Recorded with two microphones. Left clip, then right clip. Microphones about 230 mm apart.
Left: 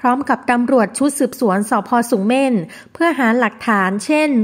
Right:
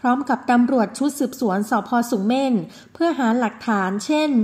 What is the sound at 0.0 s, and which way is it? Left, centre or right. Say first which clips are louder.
A woman's voice: left 4 dB; left.